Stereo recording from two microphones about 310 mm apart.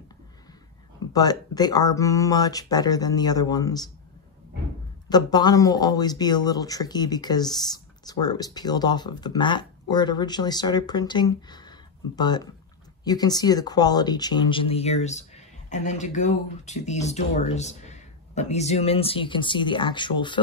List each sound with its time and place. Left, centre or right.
1.1 s speech: centre
5.1 s speech: centre